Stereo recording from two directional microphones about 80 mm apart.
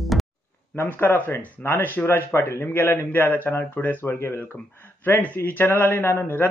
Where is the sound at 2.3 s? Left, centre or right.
Left.